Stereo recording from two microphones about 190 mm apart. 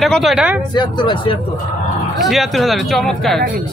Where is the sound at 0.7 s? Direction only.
25° left (ahead or behind).